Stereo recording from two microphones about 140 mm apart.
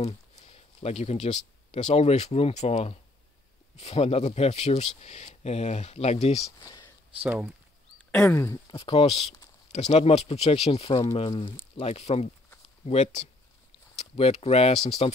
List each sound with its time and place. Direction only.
0.0 s speech: 50° left (ahead or behind)
6.6 s a sound: 25° left (ahead or behind)
7.2 s speech: 10° right (ahead or behind)
8.2 s speech: 20° left (ahead or behind)
8.6 s speech: 35° left (ahead or behind)
11.8 s speech: 50° left (ahead or behind)